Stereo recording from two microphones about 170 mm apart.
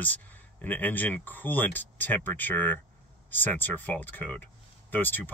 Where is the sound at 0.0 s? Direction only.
10° left (ahead or behind).